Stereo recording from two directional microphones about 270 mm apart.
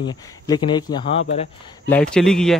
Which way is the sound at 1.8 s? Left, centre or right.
Centre.